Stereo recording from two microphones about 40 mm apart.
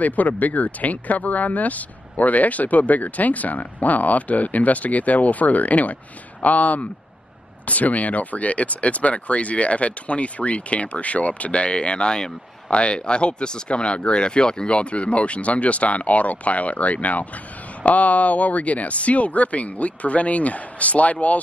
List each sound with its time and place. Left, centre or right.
0.0 s speech: left